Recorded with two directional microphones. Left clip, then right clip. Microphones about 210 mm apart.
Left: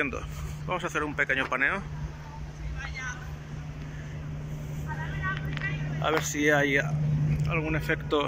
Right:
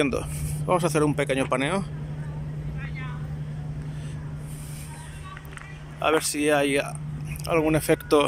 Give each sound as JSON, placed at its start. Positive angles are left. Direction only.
{"t": 0.7, "sound": "speech", "side_deg": -20}
{"t": 6.0, "sound": "speech", "side_deg": -10}
{"t": 7.4, "sound": "speech", "side_deg": -20}